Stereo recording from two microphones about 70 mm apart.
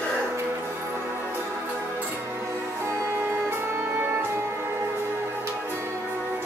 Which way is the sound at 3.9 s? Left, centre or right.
Right.